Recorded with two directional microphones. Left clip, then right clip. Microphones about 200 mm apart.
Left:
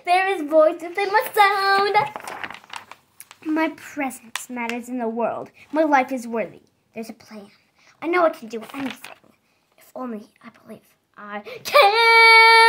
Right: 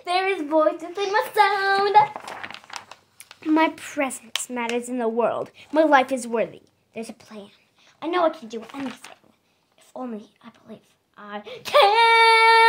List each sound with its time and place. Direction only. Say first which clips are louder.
0.0 s a woman's voice: left 4 dB; centre (ahead or behind)
2.1 s crumpling: left 2 dB; 10° left (ahead or behind)
3.2 s a woman's voice: right 3 dB; 40° right (ahead or behind); by 7.4 s 20° right (ahead or behind)
8.1 s a woman's voice: left 3 dB; 5° left (ahead or behind)
9.9 s a woman's voice: left 2 dB; centre (ahead or behind)